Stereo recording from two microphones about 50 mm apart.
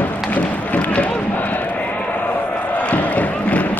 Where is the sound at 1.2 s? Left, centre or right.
Left.